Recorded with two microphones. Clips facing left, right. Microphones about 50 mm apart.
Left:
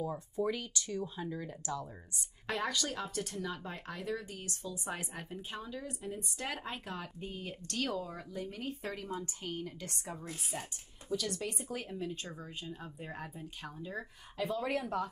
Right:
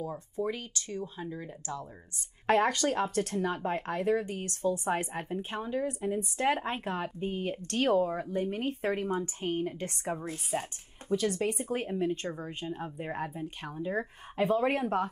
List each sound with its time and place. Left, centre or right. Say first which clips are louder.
0.0 s speech: right 1 dB; centre
0.7 s speech: right 1 dB; right
1.2 s speech: right 1 dB; centre
2.4 s speech: right 10 dB; right